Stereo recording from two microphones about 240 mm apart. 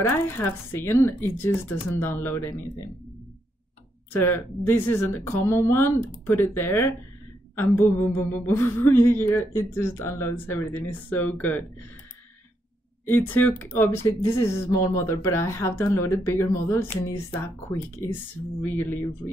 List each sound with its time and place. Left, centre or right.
0.1 s speech: centre
4.1 s speech: centre
13.0 s speech: centre